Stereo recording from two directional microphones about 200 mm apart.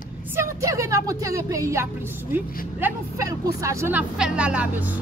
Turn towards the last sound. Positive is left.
turn(degrees=-5)  # may be behind; listen again after turning